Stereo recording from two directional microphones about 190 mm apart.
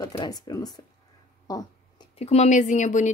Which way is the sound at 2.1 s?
35° left (ahead or behind).